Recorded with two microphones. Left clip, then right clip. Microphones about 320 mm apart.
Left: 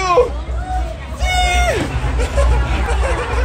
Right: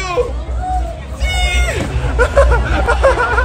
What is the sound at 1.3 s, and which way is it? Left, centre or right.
Music, centre.